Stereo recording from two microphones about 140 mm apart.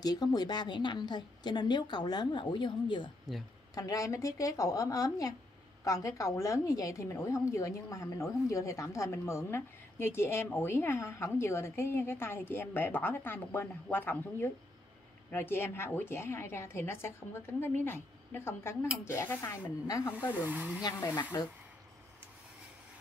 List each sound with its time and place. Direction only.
0.0 s a woman's voice: 30° left (ahead or behind)
20.3 s speech: 10° right (ahead or behind)
21.3 s a woman's voice: 25° left (ahead or behind)